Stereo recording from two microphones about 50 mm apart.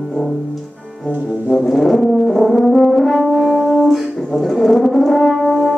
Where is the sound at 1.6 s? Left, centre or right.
Centre.